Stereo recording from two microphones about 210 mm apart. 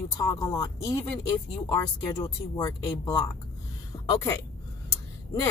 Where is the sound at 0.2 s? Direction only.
15° left (ahead or behind).